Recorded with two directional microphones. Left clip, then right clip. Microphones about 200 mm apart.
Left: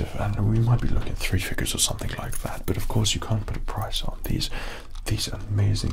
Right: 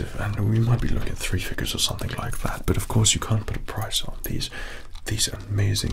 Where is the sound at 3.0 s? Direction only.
10° right (ahead or behind).